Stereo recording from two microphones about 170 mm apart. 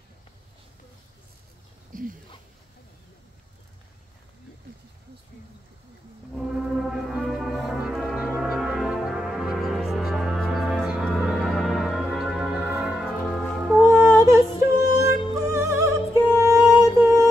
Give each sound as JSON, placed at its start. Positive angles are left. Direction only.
{"t": 1.9, "sound": "a sound", "side_deg": -55}
{"t": 6.3, "sound": "music", "side_deg": 0}
{"t": 11.2, "sound": "organ", "side_deg": 0}
{"t": 13.7, "sound": "music", "side_deg": -15}